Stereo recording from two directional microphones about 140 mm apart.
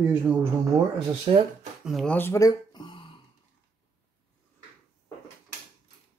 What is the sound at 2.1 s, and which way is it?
Speech, 20° left (ahead or behind).